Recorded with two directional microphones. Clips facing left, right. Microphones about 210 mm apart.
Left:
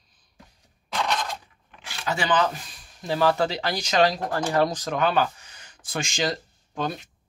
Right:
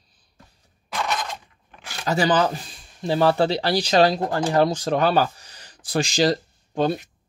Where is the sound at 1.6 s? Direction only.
40° right (ahead or behind).